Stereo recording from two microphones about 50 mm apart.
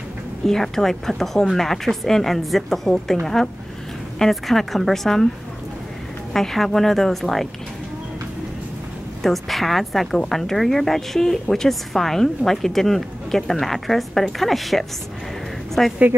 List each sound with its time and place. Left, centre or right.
0.5 s a woman's voice: centre
6.3 s speech: centre
9.2 s a woman's voice: centre
15.8 s a woman's voice: centre